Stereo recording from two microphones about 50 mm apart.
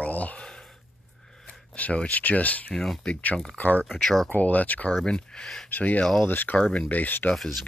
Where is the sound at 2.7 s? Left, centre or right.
Centre.